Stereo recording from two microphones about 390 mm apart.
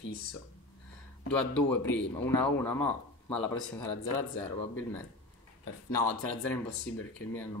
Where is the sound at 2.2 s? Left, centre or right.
Centre.